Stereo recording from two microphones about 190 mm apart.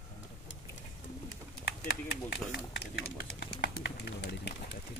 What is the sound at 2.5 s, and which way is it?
Speech, 55° left (ahead or behind).